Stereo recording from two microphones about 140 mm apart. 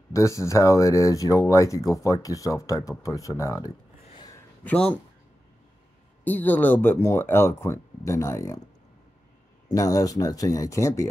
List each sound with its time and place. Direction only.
0.1 s speech: 20° left (ahead or behind)
4.1 s a sound: 30° left (ahead or behind)
4.6 s speech: 5° left (ahead or behind)
6.2 s speech: 10° left (ahead or behind)
9.7 s speech: 25° left (ahead or behind)